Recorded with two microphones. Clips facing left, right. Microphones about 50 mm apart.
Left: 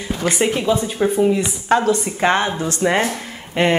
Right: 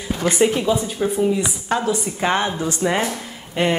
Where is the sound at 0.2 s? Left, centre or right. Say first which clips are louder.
Right 1 dB; left.